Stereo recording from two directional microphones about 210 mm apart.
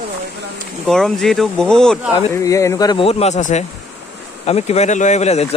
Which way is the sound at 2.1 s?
15° left (ahead or behind).